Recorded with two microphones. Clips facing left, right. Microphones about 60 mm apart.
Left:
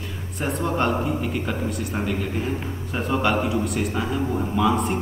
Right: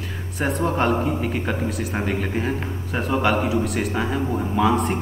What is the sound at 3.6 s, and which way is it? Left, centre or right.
Speech, right.